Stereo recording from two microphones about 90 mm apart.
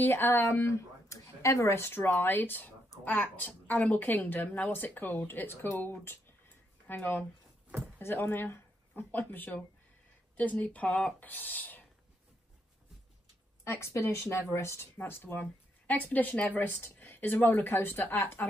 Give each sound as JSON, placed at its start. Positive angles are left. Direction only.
{"t": 0.0, "sound": "a woman's voice", "side_deg": 25}
{"t": 13.7, "sound": "a woman's voice", "side_deg": 35}